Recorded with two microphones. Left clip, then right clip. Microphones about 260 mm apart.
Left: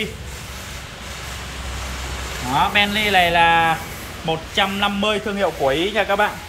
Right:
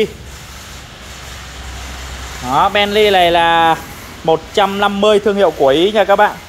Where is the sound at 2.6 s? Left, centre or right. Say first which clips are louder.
Right 6 dB; centre.